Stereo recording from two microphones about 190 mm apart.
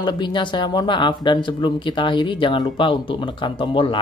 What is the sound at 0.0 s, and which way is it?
Speech, 25° left (ahead or behind).